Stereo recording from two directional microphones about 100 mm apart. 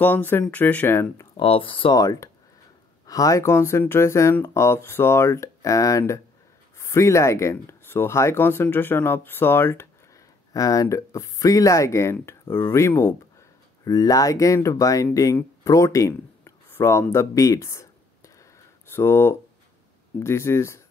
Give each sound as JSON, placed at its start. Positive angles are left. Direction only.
{"t": 0.0, "sound": "speech", "side_deg": 20}
{"t": 1.3, "sound": "speech", "side_deg": 65}
{"t": 2.0, "sound": "speech", "side_deg": 35}
{"t": 10.5, "sound": "speech", "side_deg": 35}
{"t": 13.8, "sound": "speech", "side_deg": 35}
{"t": 15.6, "sound": "a sound", "side_deg": 30}
{"t": 17.1, "sound": "speech", "side_deg": 30}